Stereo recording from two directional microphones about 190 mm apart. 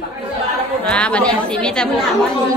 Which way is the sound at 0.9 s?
5° left (ahead or behind).